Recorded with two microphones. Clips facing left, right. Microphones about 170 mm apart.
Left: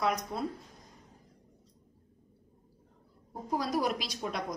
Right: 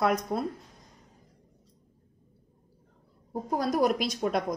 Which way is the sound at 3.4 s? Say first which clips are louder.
Right 5 dB; 50° right (ahead or behind).